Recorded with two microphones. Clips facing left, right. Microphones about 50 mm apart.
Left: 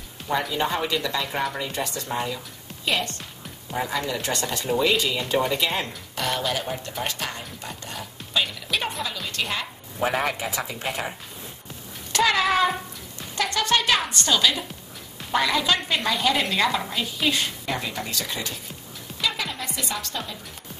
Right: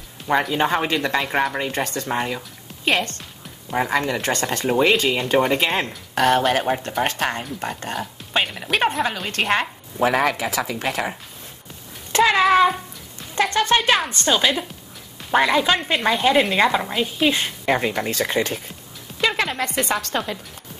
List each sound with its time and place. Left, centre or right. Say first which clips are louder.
0.3 s speech: right 5 dB; right
9.9 s speech: right 5 dB; right
12.1 s a sound: right 5 dB; right
13.4 s a woman's voice: right 5 dB; right
17.6 s speech: right 8 dB; right
19.2 s a woman's voice: right 7 dB; right